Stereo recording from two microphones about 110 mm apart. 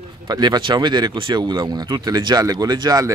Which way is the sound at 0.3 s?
40° right (ahead or behind).